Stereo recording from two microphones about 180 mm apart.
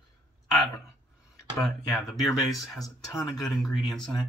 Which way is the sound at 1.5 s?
Centre (ahead or behind).